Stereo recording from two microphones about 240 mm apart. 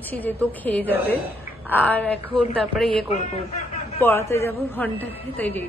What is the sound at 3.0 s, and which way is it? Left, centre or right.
Speech, left.